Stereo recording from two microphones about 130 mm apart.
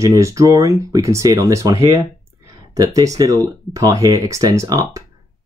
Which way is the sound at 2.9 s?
25° right (ahead or behind).